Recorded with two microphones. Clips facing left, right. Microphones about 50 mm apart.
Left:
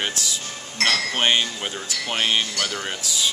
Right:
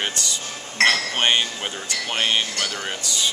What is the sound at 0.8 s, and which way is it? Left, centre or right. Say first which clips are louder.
Speech: right 4 dB; right.